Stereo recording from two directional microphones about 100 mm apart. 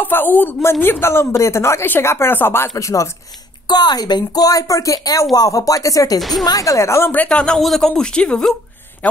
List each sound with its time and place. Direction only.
0.0 s speech: 20° left (ahead or behind)
3.6 s speech: 45° left (ahead or behind)
7.1 s speech: 15° left (ahead or behind)